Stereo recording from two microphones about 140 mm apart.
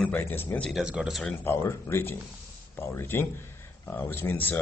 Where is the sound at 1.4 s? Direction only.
15° left (ahead or behind).